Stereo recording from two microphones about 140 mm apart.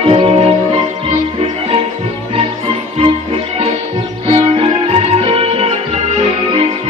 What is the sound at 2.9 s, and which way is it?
Music, 40° right (ahead or behind).